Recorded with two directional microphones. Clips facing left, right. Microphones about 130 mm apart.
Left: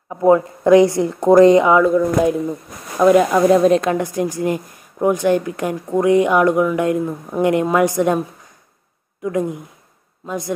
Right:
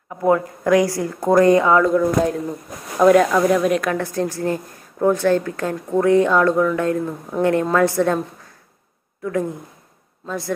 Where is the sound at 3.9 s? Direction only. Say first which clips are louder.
Left 2 dB; 15° left (ahead or behind).